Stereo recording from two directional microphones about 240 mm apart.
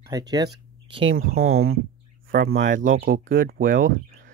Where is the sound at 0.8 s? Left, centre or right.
Right.